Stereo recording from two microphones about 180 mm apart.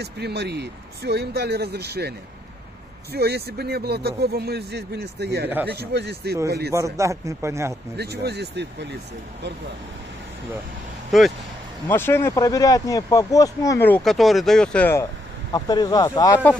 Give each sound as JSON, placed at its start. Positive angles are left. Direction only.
{"t": 0.0, "sound": "speech", "side_deg": -65}
{"t": 6.7, "sound": "a man's voice", "side_deg": -15}
{"t": 8.0, "sound": "speech", "side_deg": -65}
{"t": 11.1, "sound": "speech", "side_deg": 0}
{"t": 11.9, "sound": "speech", "side_deg": 10}
{"t": 15.5, "sound": "speech", "side_deg": 20}